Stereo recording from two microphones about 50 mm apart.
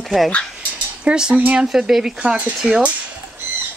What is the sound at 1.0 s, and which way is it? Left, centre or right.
Speech, right.